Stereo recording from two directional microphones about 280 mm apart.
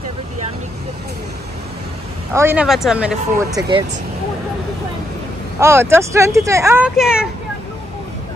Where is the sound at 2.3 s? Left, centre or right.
Centre.